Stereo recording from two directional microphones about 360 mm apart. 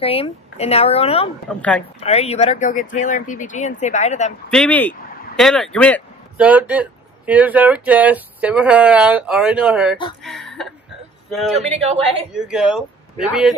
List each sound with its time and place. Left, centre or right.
0.0 s speech: centre
1.5 s speech: centre
2.0 s speech: centre
4.5 s speech: centre
10.2 s a sound: centre
11.2 s speech: centre